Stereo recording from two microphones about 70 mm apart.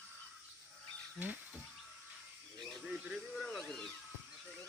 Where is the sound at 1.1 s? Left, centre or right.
Right.